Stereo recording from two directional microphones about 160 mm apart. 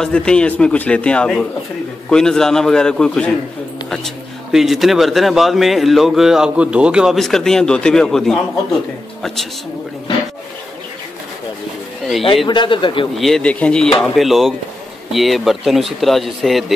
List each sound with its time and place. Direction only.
0.0 s a man's voice: 5° left (ahead or behind)
12.4 s a man's voice: 30° left (ahead or behind)
13.1 s speech: centre (ahead or behind)